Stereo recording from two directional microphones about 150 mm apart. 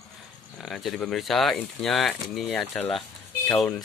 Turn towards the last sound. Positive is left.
turn(degrees=5)  # may be behind; listen again after turning